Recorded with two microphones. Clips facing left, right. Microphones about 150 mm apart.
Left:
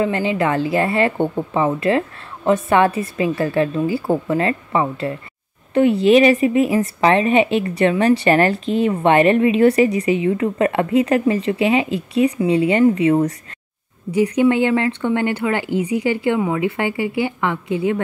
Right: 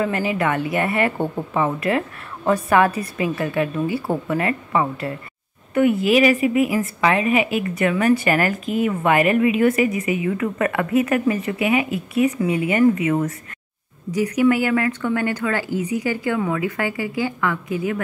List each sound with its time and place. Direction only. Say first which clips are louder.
0.0 s a woman's voice: left 3 dB; 25° left (ahead or behind)